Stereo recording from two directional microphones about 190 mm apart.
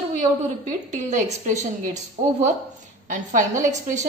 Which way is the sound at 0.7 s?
40° right (ahead or behind).